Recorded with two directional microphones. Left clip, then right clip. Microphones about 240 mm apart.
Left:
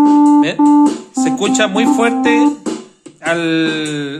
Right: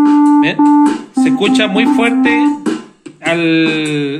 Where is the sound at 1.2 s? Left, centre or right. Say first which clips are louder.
Right 2 dB; centre.